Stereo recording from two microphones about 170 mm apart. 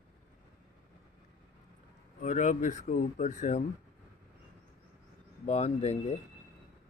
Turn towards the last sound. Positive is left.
turn(degrees=40)  # may be behind; listen again after turning